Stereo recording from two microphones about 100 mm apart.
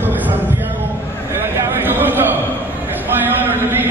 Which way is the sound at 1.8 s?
20° right (ahead or behind).